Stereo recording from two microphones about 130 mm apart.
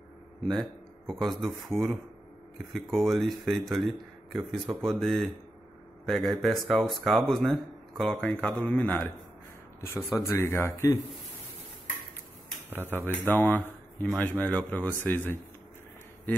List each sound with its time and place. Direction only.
0.4 s a man's voice: 5° left (ahead or behind)
10.2 s speech: 20° left (ahead or behind)
12.6 s speech: 15° right (ahead or behind)
13.3 s speech: 15° left (ahead or behind)